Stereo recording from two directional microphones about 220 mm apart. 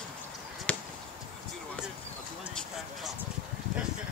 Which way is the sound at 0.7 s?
5° left (ahead or behind).